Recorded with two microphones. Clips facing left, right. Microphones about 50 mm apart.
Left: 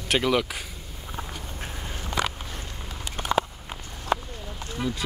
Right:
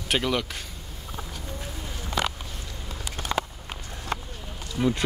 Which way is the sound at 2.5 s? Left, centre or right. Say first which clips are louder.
Left 2 dB; left.